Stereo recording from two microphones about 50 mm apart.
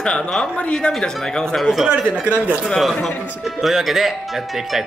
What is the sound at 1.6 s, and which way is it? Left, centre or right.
Speech, centre.